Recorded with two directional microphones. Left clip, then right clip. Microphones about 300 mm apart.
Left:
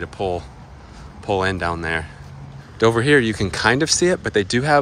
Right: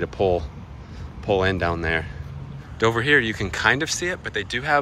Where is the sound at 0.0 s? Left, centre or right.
Centre.